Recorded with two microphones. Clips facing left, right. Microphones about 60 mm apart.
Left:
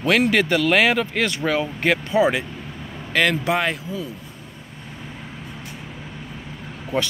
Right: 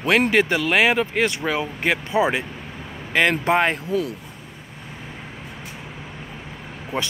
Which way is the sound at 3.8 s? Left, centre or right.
Right.